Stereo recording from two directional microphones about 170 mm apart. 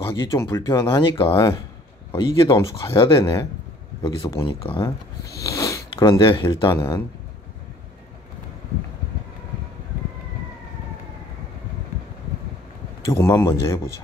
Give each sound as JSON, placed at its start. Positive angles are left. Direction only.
{"t": 0.0, "sound": "speech", "side_deg": 30}
{"t": 13.0, "sound": "speech", "side_deg": 20}